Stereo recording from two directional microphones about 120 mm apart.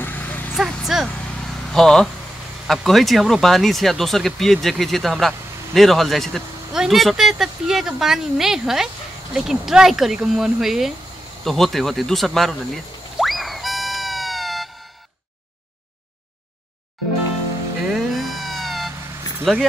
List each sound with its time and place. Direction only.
0.0 s vehicle: 15° left (ahead or behind)
0.6 s speech: 5° right (ahead or behind)
11.4 s a sound: centre (ahead or behind)
17.8 s cat: centre (ahead or behind)